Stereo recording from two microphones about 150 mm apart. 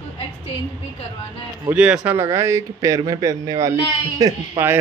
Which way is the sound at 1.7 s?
5° right (ahead or behind).